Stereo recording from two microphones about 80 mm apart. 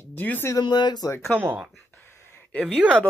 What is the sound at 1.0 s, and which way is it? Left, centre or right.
Speech, left.